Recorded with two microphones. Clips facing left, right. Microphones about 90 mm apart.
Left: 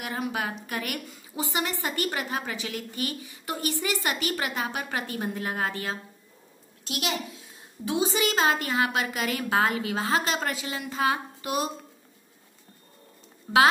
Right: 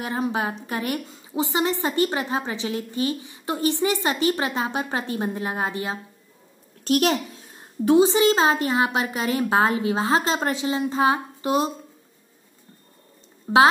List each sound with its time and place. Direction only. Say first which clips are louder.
0.0 s a woman's voice: right 5 dB; 30° right (ahead or behind)
6.9 s a sound: right 10 dB; 45° right (ahead or behind)
8.0 s a woman's voice: right 3 dB; 25° right (ahead or behind)
13.5 s speech: right 4 dB; 25° right (ahead or behind)